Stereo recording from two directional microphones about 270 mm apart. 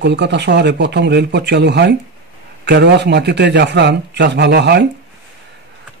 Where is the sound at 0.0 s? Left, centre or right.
Right.